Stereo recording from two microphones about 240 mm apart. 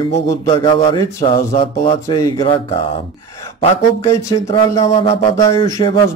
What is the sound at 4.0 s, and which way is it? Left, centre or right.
Speech, centre.